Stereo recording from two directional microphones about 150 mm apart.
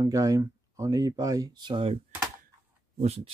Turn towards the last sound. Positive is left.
turn(degrees=-45)  # may be behind; listen again after turning